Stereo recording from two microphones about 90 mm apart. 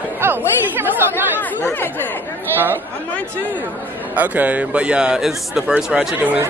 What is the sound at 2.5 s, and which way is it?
Speech, 25° right (ahead or behind).